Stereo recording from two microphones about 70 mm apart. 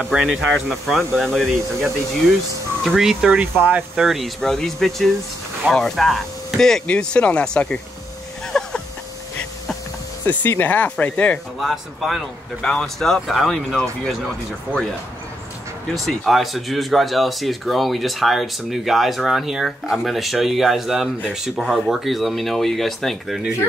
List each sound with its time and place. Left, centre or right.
0.2 s speech: centre
2.8 s speech: centre
3.3 s speech: right
3.9 s speech: centre
8.5 s a sound: centre
10.2 s speech: left
11.6 s speech: centre
14.7 s speech: centre